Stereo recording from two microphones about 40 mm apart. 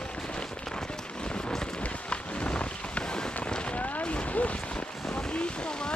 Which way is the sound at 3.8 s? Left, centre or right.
Left.